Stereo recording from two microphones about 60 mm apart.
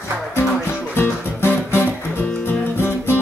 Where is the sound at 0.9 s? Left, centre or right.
Left.